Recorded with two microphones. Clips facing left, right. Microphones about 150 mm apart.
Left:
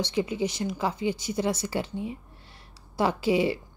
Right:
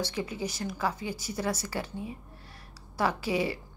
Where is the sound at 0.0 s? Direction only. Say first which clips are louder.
Left 6 dB; 20° left (ahead or behind).